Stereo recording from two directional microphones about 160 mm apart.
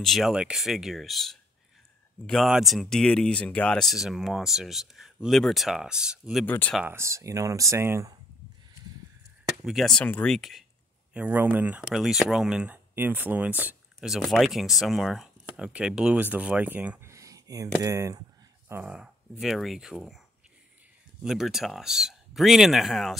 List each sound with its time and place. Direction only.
0.0 s speech: centre (ahead or behind)
6.4 s speech: 10° left (ahead or behind)
6.8 s speech: 15° right (ahead or behind)
9.5 s speech: centre (ahead or behind); by 18.2 s 20° right (ahead or behind)
18.7 s speech: 10° right (ahead or behind)
21.2 s speech: centre (ahead or behind)